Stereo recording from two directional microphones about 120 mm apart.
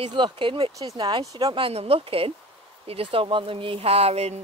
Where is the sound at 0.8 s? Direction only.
30° right (ahead or behind).